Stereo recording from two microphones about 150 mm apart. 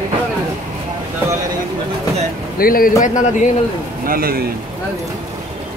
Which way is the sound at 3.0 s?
55° left (ahead or behind).